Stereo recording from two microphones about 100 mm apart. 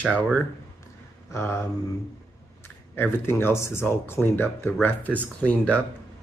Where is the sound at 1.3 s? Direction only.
25° left (ahead or behind).